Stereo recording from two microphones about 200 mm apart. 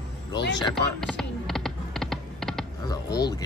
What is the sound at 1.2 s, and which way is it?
Music, centre (ahead or behind).